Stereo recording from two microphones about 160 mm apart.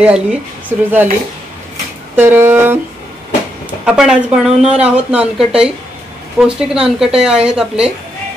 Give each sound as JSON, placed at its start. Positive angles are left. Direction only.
{"t": 0.0, "sound": "speech", "side_deg": -5}
{"t": 2.1, "sound": "speech", "side_deg": -15}
{"t": 3.8, "sound": "speech", "side_deg": -5}